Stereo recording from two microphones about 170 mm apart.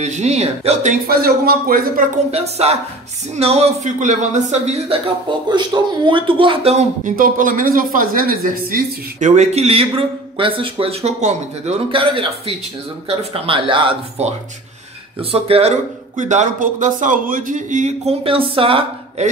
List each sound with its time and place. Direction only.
0.0 s speech: 40° right (ahead or behind)
1.0 s speech: 60° right (ahead or behind)
2.3 s speech: 40° right (ahead or behind); by 9.3 s 60° right (ahead or behind)
9.3 s speech: 40° right (ahead or behind)
15.3 s speech: 35° right (ahead or behind)